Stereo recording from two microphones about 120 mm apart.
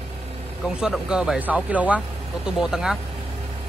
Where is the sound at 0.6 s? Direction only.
5° right (ahead or behind).